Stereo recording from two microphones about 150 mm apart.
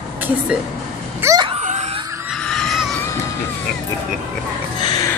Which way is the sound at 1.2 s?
25° right (ahead or behind).